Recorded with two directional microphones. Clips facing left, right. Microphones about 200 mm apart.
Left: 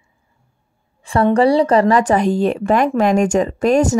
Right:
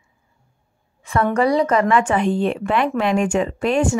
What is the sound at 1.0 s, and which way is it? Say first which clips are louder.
A woman's voice: left 5 dB; 30° left (ahead or behind).